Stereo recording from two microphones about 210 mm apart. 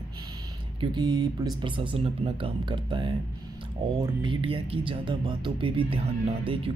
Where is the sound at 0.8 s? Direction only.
20° right (ahead or behind).